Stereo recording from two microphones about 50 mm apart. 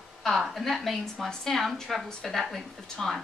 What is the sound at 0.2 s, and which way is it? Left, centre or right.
A woman's voice, centre.